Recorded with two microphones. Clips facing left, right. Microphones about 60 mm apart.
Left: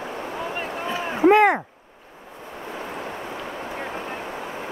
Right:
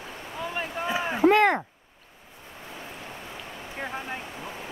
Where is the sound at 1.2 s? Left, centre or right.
Centre.